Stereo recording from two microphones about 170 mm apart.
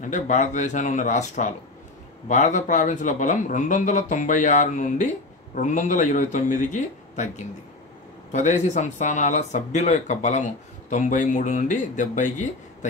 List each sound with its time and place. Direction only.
0.0 s speech: 45° left (ahead or behind)